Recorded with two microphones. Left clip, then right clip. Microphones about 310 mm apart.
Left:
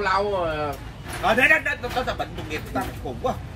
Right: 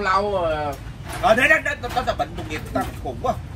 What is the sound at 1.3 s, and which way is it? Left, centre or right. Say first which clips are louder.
Speech: right 1 dB; centre.